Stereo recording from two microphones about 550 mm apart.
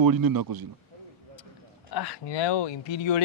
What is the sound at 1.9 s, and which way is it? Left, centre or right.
Speech, left.